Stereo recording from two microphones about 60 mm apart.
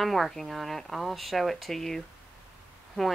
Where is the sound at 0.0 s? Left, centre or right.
Centre.